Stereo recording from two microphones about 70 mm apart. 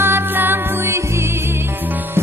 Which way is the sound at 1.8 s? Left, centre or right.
Right.